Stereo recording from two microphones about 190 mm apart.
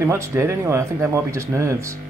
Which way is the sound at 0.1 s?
15° right (ahead or behind).